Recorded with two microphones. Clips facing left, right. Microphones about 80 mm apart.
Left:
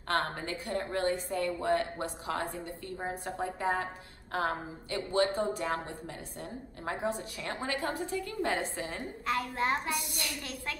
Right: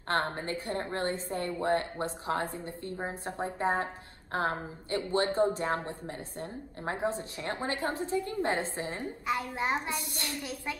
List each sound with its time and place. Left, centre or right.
0.1 s a woman's voice: right
9.9 s a woman's voice: right
10.4 s a woman's voice: centre